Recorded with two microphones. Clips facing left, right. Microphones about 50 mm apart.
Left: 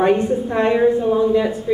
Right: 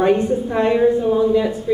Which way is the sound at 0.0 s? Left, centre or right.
Centre.